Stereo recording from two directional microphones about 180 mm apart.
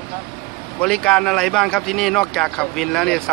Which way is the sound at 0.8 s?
5° left (ahead or behind).